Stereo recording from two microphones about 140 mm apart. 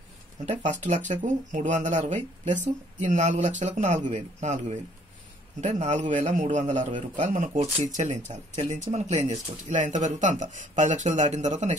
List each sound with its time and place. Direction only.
0.5 s speech: 60° right (ahead or behind)